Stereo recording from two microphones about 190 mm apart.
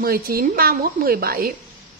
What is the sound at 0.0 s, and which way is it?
A woman's voice, 50° right (ahead or behind).